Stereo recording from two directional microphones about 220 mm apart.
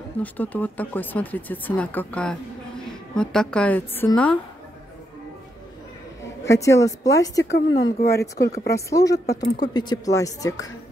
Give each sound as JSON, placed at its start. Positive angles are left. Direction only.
{"t": 0.2, "sound": "a woman's voice", "side_deg": 5}
{"t": 6.4, "sound": "speech", "side_deg": 15}
{"t": 7.5, "sound": "speech", "side_deg": 55}
{"t": 8.7, "sound": "speech", "side_deg": 15}